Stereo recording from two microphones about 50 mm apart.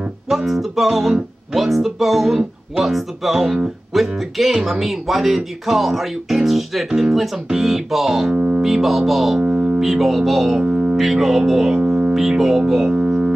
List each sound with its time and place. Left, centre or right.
0.3 s speech: centre
9.4 s music: centre
9.8 s speech: centre
10.6 s music: centre
11.0 s speech: centre
12.1 s speech: centre